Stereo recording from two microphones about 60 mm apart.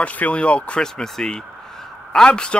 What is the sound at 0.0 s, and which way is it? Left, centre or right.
Speech, left.